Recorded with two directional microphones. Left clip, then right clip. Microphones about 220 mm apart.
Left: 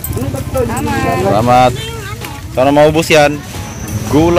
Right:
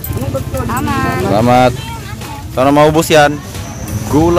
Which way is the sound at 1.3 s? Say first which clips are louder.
Left 1 dB; 25° right (ahead or behind).